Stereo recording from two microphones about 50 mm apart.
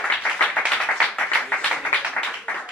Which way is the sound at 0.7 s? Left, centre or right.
Centre.